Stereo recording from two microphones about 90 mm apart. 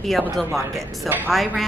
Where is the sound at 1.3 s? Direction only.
Centre (ahead or behind).